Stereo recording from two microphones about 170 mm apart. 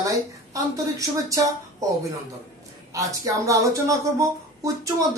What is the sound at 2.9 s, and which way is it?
A woman's voice, 20° right (ahead or behind).